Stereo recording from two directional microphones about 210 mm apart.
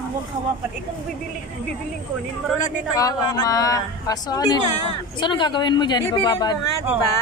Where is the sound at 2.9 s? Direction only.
15° left (ahead or behind).